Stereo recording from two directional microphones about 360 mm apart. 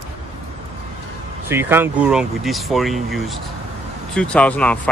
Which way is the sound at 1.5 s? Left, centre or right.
Centre.